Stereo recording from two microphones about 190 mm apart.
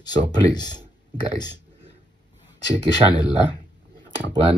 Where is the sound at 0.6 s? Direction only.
20° left (ahead or behind).